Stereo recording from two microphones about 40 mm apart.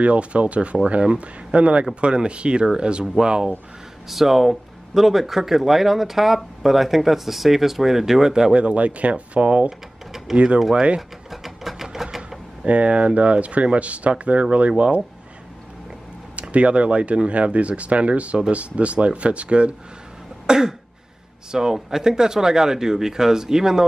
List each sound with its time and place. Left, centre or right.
0.0 s speech: right
4.1 s speech: centre
8.5 s speech: right
9.7 s a sound: centre
10.3 s speech: right
11.0 s a sound: centre
12.6 s speech: right
16.3 s speech: right
20.4 s cough: centre
21.5 s speech: centre